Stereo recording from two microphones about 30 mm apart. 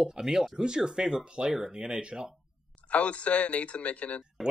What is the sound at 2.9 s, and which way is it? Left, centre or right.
Speech, left.